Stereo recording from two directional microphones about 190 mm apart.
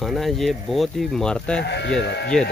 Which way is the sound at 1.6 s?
60° left (ahead or behind).